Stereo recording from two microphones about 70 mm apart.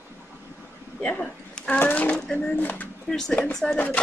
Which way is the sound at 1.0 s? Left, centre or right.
Centre.